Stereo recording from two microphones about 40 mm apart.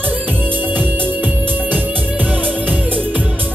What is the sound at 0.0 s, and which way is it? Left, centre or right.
Music, right.